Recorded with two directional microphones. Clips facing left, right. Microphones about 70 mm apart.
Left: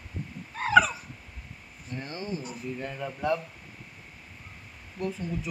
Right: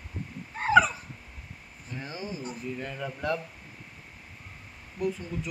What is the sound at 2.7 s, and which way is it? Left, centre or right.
Speech, centre.